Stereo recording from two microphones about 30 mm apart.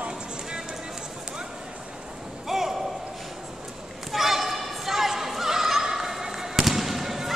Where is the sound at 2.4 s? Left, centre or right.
Centre.